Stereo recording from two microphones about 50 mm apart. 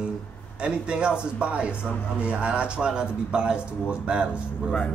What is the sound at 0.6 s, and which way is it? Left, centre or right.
A man's voice, centre.